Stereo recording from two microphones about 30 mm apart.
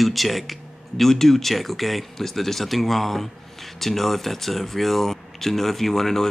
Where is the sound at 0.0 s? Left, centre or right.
Centre.